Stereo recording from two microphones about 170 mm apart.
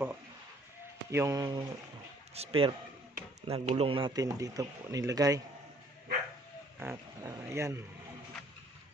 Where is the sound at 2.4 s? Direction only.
30° right (ahead or behind).